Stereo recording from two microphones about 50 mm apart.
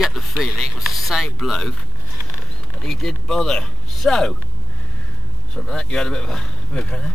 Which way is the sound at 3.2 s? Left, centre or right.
Centre.